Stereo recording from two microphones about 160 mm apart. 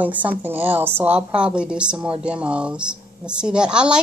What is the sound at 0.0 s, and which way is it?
A woman's voice, 10° right (ahead or behind).